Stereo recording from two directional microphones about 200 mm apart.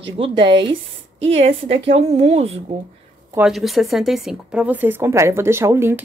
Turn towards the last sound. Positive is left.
turn(degrees=-10)  # may be behind; listen again after turning